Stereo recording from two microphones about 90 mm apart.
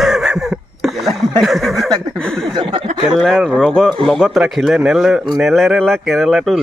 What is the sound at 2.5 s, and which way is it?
Speech, 55° right (ahead or behind).